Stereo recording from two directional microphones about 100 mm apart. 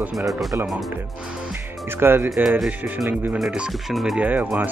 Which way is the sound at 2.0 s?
25° right (ahead or behind).